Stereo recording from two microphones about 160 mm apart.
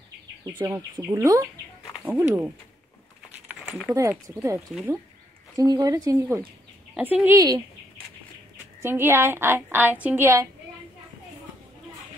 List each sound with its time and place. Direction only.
0.5 s a woman's voice: 25° right (ahead or behind)
3.4 s a sound: centre (ahead or behind)
4.1 s a woman's voice: 15° right (ahead or behind)
4.6 s speech: centre (ahead or behind)
5.6 s a woman's voice: 25° right (ahead or behind)
7.3 s speech: 20° right (ahead or behind)
8.8 s a woman's voice: 15° right (ahead or behind)